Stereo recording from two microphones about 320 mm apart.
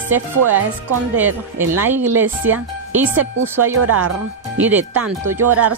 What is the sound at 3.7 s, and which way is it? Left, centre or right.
Speech, right.